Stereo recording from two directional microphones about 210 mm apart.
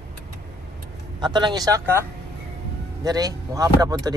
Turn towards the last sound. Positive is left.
turn(degrees=-15)  # may be behind; listen again after turning